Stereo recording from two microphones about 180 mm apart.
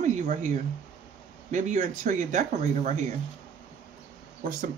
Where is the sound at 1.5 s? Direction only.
45° right (ahead or behind).